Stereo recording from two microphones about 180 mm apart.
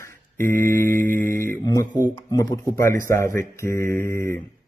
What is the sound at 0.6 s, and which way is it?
Speech, 15° left (ahead or behind).